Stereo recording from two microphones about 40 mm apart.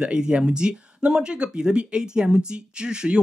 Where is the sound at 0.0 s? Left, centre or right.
Right.